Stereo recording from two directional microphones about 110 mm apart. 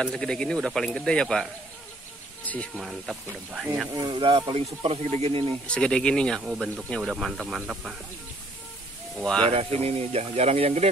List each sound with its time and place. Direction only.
0.0 s speech: 5° left (ahead or behind)
2.7 s speech: 5° right (ahead or behind)
4.0 s speech: 50° right (ahead or behind)
4.6 s speech: 60° right (ahead or behind)
5.7 s speech: 10° left (ahead or behind)
6.4 s speech: 5° right (ahead or behind)
9.1 s speech: 5° left (ahead or behind)
9.5 s speech: 60° right (ahead or behind)